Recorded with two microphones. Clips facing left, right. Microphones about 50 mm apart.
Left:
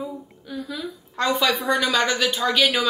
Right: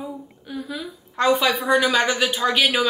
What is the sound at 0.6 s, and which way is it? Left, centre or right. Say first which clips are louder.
A woman's voice: even; centre.